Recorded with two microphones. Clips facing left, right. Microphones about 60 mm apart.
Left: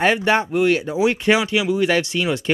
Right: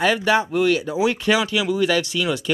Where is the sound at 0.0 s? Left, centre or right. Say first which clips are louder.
Left 1 dB; left.